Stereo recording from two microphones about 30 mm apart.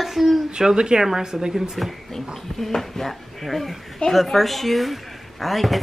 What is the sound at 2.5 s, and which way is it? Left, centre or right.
A child's voice, centre.